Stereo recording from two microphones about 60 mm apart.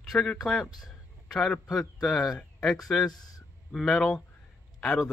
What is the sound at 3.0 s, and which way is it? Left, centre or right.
Speech, left.